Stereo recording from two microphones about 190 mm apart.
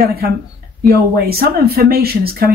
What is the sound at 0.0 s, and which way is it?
Speech, 55° right (ahead or behind).